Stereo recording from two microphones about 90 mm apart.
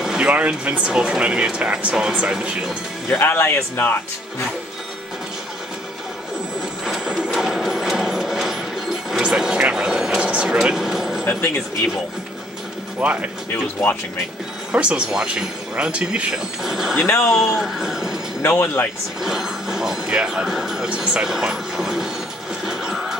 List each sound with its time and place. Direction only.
0.0 s speech: 5° right (ahead or behind)
3.1 s speech: 25° left (ahead or behind)
6.8 s a sound: 5° right (ahead or behind)
13.0 s speech: 15° right (ahead or behind)
14.7 s speech: 10° right (ahead or behind)
18.4 s speech: 25° left (ahead or behind)
19.2 s speech: 5° right (ahead or behind)
22.7 s music: 5° right (ahead or behind)